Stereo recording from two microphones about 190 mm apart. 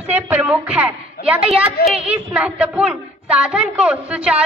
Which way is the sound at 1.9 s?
30° right (ahead or behind).